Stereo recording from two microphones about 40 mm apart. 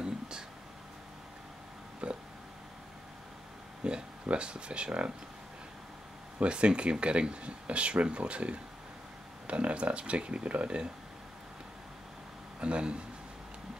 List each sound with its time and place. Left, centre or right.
2.0 s a sound: right
3.8 s speech: right
6.4 s speech: right
12.5 s speech: right